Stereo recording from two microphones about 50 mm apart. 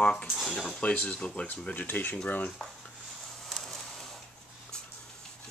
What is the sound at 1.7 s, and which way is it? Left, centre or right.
Speech, left.